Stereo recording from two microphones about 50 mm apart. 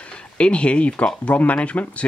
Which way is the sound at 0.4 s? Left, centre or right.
Left.